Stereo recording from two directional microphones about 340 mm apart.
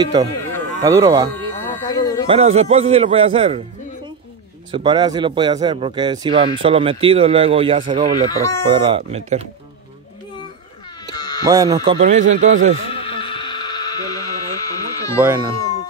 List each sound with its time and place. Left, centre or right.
0.0 s speech: centre
1.3 s a sound: centre
2.2 s speech: centre
4.6 s speech: centre
8.3 s speech: centre
8.7 s speech: centre
11.1 s a sound: centre
11.4 s speech: centre
12.9 s a sound: centre
15.1 s speech: centre